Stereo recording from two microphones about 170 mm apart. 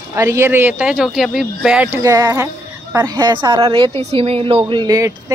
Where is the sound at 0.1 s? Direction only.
15° right (ahead or behind).